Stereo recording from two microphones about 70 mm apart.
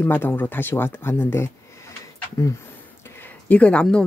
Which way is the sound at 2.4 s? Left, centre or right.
Left.